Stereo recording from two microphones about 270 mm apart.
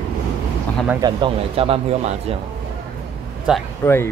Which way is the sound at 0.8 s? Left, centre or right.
Centre.